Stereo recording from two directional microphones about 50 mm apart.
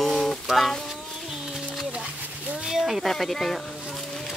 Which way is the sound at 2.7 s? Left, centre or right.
Centre.